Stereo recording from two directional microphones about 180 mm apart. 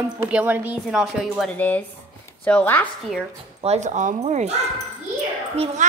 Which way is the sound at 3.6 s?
40° right (ahead or behind).